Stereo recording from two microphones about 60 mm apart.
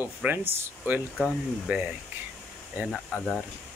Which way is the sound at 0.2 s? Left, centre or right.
Centre.